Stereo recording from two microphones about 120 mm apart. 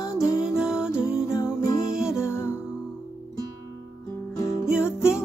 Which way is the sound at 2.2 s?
20° left (ahead or behind).